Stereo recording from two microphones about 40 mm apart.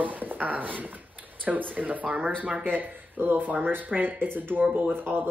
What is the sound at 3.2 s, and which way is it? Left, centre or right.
Speech, right.